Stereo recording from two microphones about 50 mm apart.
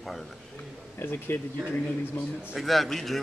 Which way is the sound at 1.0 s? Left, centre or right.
Left.